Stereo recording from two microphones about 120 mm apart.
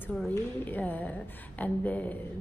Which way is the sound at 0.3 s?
15° left (ahead or behind).